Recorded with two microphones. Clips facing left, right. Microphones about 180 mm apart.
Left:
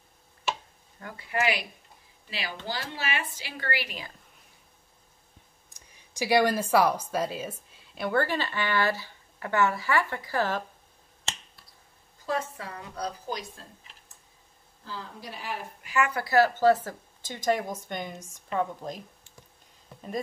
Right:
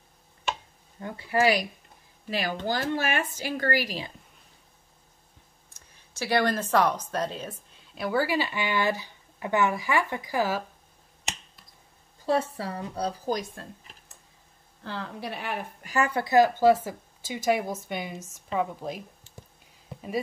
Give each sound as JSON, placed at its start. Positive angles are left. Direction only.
{"t": 0.9, "sound": "a woman's voice", "side_deg": -25}
{"t": 2.2, "sound": "speech", "side_deg": -50}
{"t": 5.7, "sound": "speech", "side_deg": 15}
{"t": 11.3, "sound": "finger snapping", "side_deg": -15}
{"t": 12.3, "sound": "a woman's voice", "side_deg": -30}
{"t": 13.3, "sound": "speech", "side_deg": -45}
{"t": 14.8, "sound": "a woman's voice", "side_deg": -65}
{"t": 15.8, "sound": "speech", "side_deg": -40}
{"t": 16.1, "sound": "a woman's voice", "side_deg": -20}